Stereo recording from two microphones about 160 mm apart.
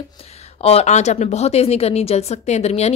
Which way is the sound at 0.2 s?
40° left (ahead or behind).